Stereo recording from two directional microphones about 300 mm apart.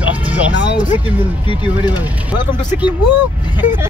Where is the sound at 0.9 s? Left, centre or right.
Centre.